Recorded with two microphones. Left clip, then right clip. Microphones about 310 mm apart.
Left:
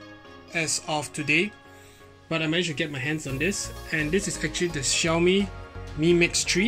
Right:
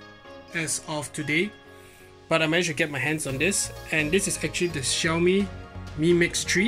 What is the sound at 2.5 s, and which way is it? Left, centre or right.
Speech, right.